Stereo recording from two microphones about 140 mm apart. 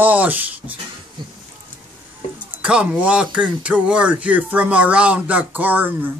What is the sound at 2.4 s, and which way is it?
Speech, 10° right (ahead or behind).